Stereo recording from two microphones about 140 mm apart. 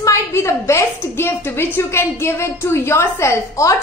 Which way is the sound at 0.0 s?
20° left (ahead or behind).